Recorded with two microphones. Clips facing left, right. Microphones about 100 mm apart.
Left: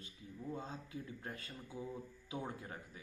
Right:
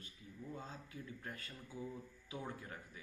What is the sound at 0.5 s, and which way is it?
Speech, 25° left (ahead or behind).